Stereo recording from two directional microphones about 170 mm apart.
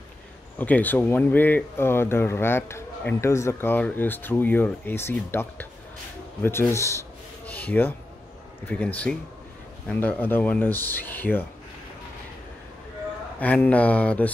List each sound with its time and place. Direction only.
0.6 s speech: 10° left (ahead or behind)
7.4 s a sound: 10° left (ahead or behind)
8.6 s speech: 10° left (ahead or behind)
13.4 s speech: 10° left (ahead or behind)